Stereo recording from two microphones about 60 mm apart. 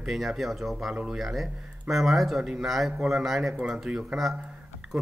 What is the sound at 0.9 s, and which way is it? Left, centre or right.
Speech, centre.